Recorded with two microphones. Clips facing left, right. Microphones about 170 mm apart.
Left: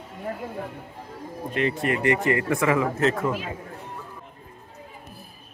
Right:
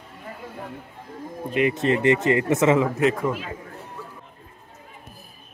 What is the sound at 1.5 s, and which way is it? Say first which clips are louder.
Speech: right 4 dB; 15° right (ahead or behind).